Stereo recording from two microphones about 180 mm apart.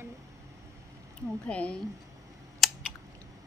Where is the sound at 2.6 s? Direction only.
Centre (ahead or behind).